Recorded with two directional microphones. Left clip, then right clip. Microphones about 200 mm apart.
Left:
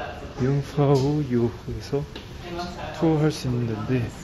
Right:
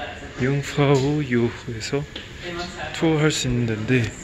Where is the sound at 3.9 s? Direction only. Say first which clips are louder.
Right 6 dB; 15° right (ahead or behind).